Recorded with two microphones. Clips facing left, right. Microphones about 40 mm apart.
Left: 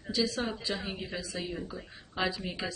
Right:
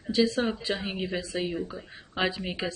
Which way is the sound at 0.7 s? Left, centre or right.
Right.